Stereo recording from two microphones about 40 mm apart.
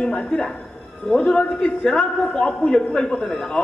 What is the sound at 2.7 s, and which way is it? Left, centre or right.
Speech, centre.